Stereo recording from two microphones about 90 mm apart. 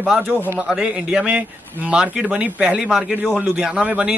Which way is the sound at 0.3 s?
20° right (ahead or behind).